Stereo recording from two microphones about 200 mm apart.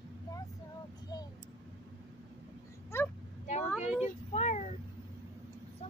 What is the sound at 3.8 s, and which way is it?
Child singing, 35° left (ahead or behind).